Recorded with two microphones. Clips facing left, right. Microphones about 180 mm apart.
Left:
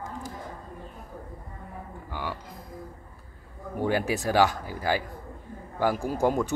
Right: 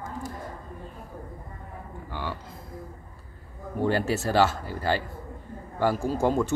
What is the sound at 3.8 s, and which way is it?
Speech, 10° left (ahead or behind).